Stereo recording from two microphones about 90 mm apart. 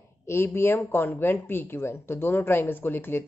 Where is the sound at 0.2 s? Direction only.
25° left (ahead or behind).